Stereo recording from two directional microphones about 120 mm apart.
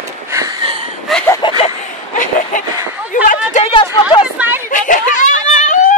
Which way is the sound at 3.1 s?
80° left.